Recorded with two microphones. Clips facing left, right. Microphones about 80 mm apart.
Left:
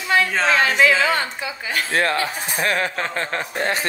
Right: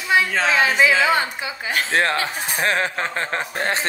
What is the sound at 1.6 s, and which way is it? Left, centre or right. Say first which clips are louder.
Speech: right 1 dB; right.